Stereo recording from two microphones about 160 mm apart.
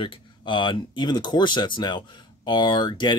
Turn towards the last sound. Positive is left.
turn(degrees=30)  # may be behind; listen again after turning